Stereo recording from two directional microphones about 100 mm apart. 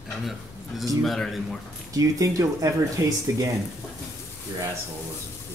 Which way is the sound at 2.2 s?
35° right (ahead or behind).